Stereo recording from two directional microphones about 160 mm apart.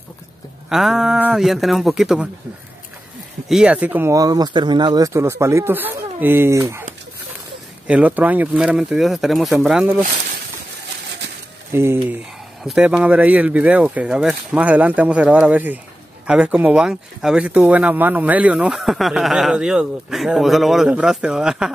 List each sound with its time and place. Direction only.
0.7 s speech: centre (ahead or behind)
3.4 s speech: 5° right (ahead or behind)
7.8 s speech: 10° right (ahead or behind)
11.7 s speech: 15° right (ahead or behind)